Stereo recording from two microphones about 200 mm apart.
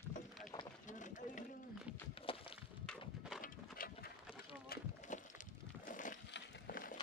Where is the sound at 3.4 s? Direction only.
45° left (ahead or behind).